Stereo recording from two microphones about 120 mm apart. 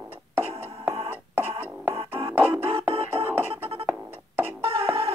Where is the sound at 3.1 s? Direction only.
20° right (ahead or behind).